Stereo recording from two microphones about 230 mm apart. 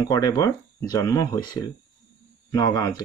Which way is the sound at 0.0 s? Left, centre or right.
Centre.